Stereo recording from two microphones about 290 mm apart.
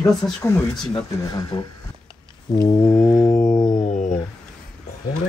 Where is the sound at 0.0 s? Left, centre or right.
Centre.